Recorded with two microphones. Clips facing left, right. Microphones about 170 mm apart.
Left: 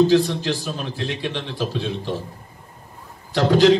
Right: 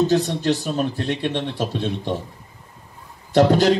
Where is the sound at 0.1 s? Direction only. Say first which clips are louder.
Left 1 dB; 40° right (ahead or behind).